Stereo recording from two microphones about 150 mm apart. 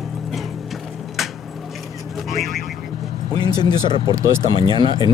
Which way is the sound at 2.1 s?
Centre (ahead or behind).